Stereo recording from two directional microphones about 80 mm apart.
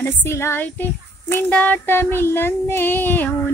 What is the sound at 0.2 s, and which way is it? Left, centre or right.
Child singing, left.